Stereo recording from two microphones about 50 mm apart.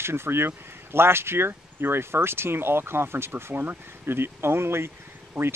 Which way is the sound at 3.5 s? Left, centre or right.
Right.